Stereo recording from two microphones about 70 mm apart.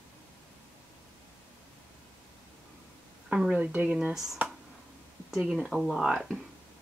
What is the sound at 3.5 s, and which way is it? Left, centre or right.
Speech, right.